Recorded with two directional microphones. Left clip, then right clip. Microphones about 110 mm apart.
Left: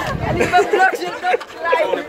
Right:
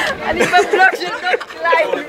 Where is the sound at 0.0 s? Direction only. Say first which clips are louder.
Right 3 dB; centre (ahead or behind).